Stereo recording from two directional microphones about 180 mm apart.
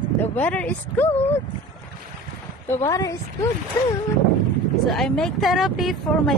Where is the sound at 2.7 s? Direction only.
20° left (ahead or behind).